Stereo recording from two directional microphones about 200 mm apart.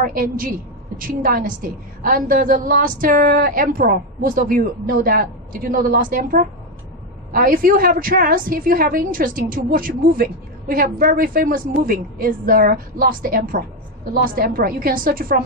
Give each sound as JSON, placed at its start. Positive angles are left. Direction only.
{"t": 0.0, "sound": "a woman's voice", "side_deg": -45}